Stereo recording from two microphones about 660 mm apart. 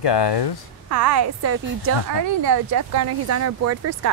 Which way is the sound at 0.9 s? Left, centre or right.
Right.